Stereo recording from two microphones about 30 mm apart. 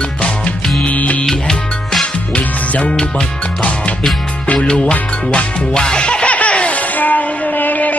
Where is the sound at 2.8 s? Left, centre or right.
Left.